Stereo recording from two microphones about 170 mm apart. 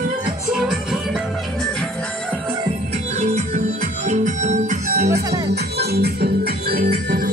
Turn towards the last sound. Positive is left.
turn(degrees=-60)  # may be behind; listen again after turning